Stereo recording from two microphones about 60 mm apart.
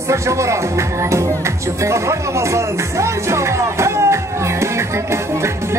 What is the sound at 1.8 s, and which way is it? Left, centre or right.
Music, right.